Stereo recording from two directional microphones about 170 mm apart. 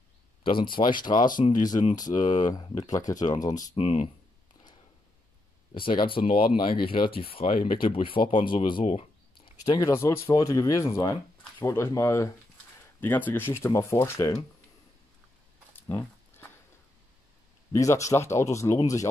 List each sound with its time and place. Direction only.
0.4 s speech: 30° left (ahead or behind)
1.4 s speech: 50° left (ahead or behind)
1.7 s speech: 25° left (ahead or behind)
3.7 s speech: 35° left (ahead or behind)
5.8 s speech: 30° left (ahead or behind)
9.8 s speech: 15° left (ahead or behind)
15.9 s a sound: 10° left (ahead or behind)
17.7 s speech: 20° left (ahead or behind)